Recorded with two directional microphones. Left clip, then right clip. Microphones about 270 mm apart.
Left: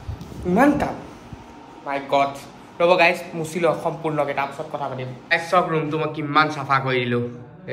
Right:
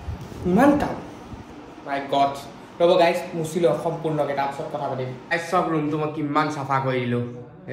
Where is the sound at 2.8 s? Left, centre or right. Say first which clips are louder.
Left 1 dB; left.